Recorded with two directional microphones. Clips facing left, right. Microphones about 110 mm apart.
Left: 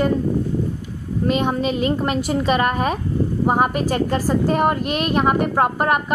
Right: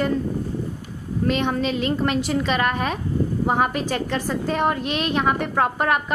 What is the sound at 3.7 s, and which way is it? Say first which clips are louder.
Speech: left 4 dB; 45° left (ahead or behind).